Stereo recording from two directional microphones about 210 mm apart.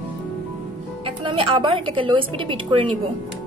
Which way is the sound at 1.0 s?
25° right (ahead or behind).